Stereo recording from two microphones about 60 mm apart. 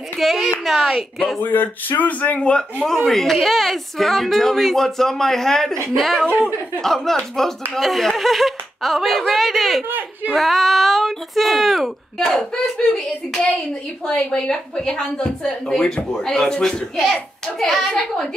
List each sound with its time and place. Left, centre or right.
0.2 s a woman's voice: centre
1.4 s speech: left
2.8 s a woman's voice: centre
9.8 s speech: right
10.3 s a woman's voice: centre
14.0 s speech: centre